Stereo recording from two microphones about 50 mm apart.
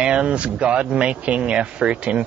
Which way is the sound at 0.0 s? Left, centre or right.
Centre.